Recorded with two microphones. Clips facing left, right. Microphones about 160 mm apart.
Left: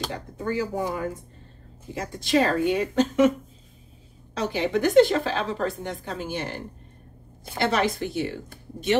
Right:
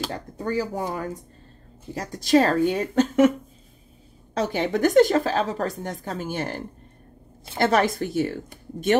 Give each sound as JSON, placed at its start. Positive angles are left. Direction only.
{"t": 0.4, "sound": "a woman's voice", "side_deg": -40}
{"t": 4.3, "sound": "a woman's voice", "side_deg": -50}